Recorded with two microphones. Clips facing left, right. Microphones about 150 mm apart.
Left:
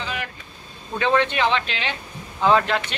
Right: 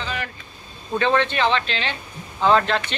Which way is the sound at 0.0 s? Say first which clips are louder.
Right 1 dB; 10° left (ahead or behind).